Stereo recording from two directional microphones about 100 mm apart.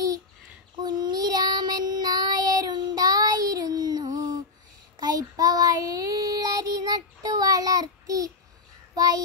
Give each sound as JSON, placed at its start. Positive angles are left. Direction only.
{"t": 0.8, "sound": "child singing", "side_deg": -45}